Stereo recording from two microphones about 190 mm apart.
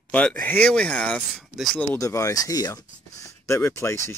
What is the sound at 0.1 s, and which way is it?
Speech, 5° left (ahead or behind).